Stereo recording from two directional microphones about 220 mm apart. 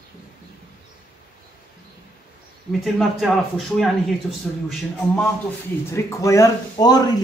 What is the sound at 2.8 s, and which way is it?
Speech, centre (ahead or behind).